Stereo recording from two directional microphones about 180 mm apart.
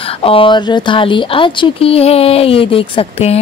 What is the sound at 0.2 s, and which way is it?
Speech, 30° left (ahead or behind).